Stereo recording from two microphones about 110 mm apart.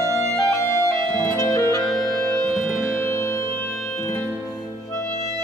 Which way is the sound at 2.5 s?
25° left (ahead or behind).